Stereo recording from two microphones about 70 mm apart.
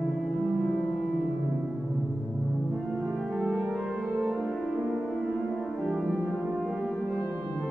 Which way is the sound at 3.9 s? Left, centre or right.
Centre.